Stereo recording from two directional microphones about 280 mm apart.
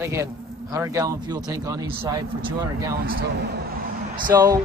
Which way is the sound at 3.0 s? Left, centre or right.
Right.